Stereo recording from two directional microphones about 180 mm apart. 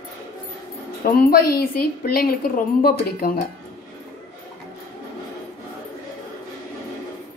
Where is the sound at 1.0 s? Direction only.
55° left (ahead or behind).